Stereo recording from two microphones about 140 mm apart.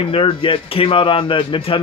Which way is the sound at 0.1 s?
40° left (ahead or behind).